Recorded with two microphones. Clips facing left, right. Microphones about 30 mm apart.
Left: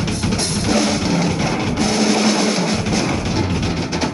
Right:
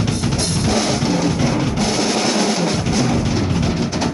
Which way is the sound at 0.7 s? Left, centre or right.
Centre.